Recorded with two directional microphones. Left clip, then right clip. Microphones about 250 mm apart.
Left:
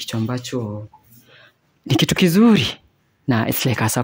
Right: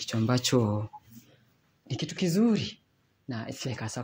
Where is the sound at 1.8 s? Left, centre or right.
Left.